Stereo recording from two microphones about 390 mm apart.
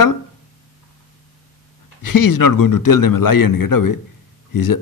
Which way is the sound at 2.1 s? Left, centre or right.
Left.